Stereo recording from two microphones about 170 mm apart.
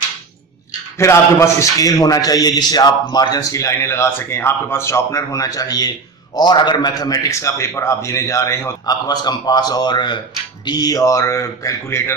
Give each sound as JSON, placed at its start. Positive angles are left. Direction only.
{"t": 0.9, "sound": "speech", "side_deg": 15}